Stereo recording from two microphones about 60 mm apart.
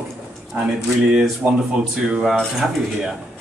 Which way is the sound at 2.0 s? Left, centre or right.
Centre.